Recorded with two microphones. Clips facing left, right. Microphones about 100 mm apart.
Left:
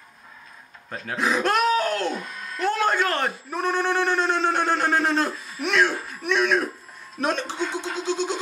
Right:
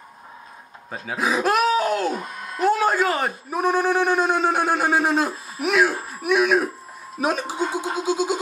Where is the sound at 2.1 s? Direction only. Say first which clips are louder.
Right 3 dB; 40° right (ahead or behind).